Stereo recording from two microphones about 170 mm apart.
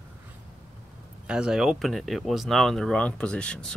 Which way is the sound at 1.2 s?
5° right (ahead or behind).